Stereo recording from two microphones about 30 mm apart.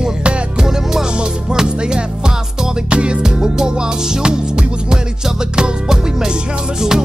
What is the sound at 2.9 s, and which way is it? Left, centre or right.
Music, right.